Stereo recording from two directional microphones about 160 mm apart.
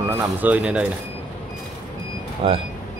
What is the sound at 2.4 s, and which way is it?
Speech, 35° right (ahead or behind).